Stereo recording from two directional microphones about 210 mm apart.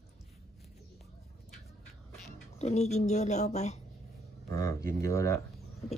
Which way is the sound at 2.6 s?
30° left (ahead or behind).